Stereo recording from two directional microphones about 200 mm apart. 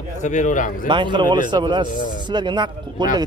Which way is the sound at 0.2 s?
40° left (ahead or behind).